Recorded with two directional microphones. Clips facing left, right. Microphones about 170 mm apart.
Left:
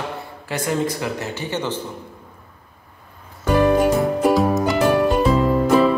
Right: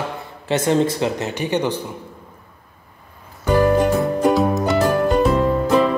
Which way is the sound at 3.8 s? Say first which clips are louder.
Even; centre (ahead or behind).